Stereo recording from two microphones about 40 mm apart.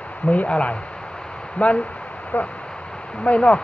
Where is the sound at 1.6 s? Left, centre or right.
Left.